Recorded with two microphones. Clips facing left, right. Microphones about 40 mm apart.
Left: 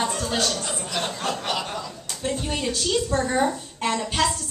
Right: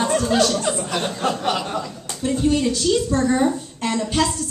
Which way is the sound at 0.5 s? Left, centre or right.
Right.